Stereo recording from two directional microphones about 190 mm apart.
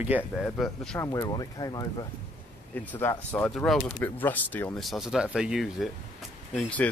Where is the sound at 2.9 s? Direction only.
10° left (ahead or behind).